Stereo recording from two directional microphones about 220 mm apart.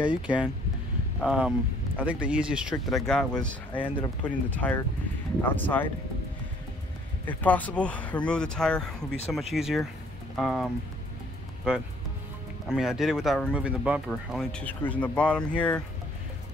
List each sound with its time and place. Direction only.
0.0 s speech: 5° right (ahead or behind)
3.7 s speech: 20° left (ahead or behind)
4.5 s speech: 5° left (ahead or behind)
7.2 s speech: 5° left (ahead or behind)